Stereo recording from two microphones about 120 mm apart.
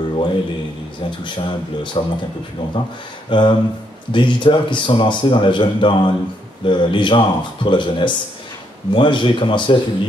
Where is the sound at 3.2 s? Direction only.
40° left (ahead or behind).